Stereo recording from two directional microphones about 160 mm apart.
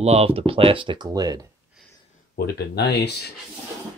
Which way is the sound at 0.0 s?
40° right (ahead or behind).